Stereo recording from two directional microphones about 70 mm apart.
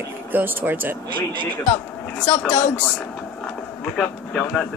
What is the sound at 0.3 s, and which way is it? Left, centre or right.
Speech, right.